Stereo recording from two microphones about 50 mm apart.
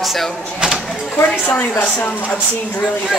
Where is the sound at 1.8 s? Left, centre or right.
Left.